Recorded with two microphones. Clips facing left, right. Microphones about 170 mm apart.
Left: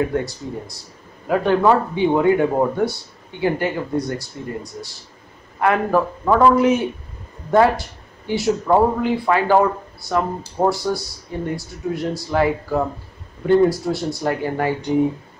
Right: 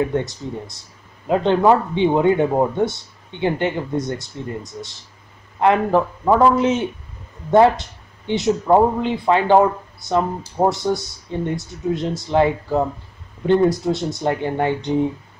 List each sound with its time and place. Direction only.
0.1 s speech: 20° right (ahead or behind)